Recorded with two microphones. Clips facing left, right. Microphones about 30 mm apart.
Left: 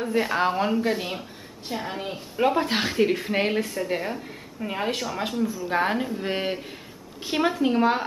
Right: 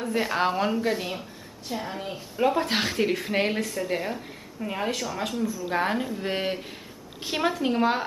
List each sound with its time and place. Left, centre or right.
0.1 s a woman's voice: centre
2.7 s a woman's voice: centre
5.7 s a woman's voice: centre